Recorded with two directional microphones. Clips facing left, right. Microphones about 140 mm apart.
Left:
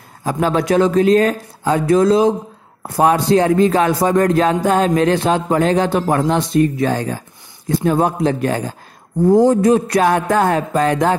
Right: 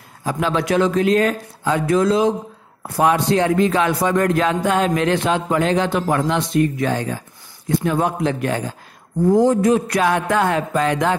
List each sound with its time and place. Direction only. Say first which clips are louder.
0.2 s a man's voice: left 3 dB; 40° left (ahead or behind)